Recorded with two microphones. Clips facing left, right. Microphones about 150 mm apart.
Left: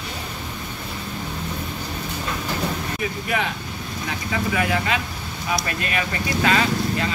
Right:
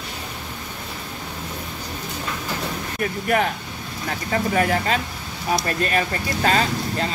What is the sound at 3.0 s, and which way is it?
Speech, 50° right (ahead or behind).